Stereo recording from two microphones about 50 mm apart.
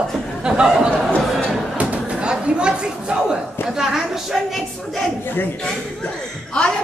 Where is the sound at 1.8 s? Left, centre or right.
Right.